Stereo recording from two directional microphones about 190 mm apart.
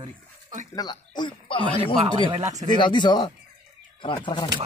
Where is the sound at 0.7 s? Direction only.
20° left (ahead or behind).